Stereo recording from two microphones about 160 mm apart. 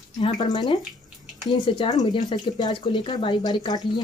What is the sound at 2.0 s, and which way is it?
Speech, 25° left (ahead or behind).